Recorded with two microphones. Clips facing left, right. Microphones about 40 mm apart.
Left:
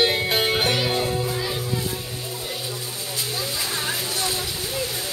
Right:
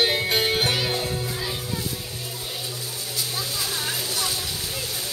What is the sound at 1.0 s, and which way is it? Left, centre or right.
Music, centre.